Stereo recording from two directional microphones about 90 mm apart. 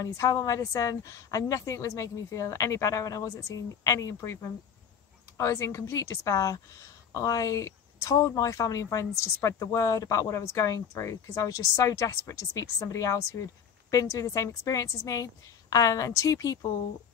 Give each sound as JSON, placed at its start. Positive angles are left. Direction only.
{"t": 0.0, "sound": "speech", "side_deg": 35}